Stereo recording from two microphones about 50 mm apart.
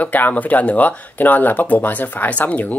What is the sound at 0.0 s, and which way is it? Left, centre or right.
Speech, left.